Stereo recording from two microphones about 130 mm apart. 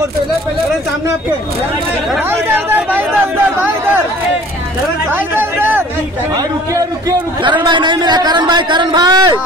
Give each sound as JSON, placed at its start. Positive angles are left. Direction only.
{"t": 2.5, "sound": "speech", "side_deg": -15}
{"t": 5.1, "sound": "speech", "side_deg": -15}
{"t": 6.7, "sound": "a man's voice", "side_deg": -30}